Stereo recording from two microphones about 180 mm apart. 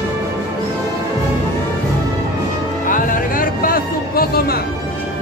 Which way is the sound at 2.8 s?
50° left (ahead or behind).